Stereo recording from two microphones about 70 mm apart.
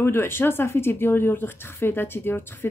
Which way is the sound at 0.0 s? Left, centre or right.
Left.